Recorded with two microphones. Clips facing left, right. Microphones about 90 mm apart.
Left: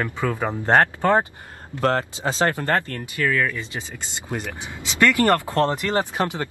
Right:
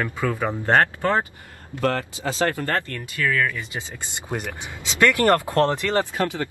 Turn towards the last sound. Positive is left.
turn(degrees=20)  # may be behind; listen again after turning